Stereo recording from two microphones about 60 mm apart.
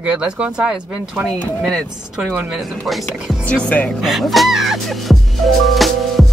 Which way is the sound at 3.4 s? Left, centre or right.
Left.